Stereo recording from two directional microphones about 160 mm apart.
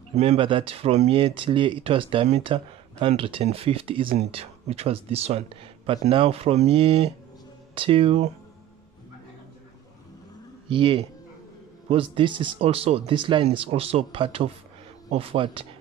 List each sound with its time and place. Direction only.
0.1 s speech: 45° right (ahead or behind)
10.7 s speech: 30° right (ahead or behind)